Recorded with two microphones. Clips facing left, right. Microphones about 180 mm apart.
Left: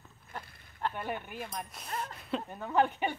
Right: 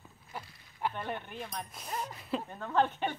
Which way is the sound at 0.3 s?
10° right (ahead or behind).